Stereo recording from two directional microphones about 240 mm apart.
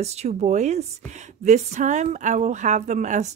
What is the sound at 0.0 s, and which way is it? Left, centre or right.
Speech, right.